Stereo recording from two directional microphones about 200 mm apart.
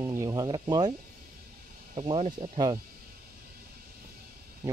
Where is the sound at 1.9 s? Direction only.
25° right (ahead or behind).